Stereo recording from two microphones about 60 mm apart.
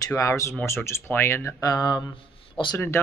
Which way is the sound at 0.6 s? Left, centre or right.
Left.